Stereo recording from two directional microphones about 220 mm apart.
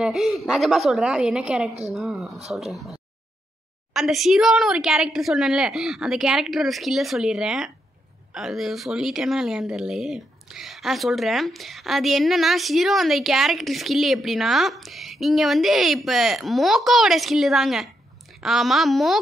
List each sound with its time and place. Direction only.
0.0 s speech: centre (ahead or behind)